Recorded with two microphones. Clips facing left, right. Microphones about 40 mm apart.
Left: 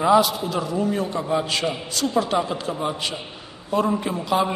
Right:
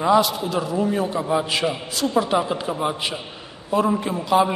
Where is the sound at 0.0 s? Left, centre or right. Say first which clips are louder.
Even; centre.